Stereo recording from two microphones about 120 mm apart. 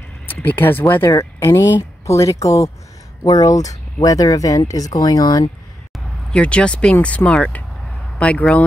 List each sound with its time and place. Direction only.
0.3 s speech: 15° left (ahead or behind); by 5.4 s 30° left (ahead or behind)
5.9 s speech: 10° left (ahead or behind)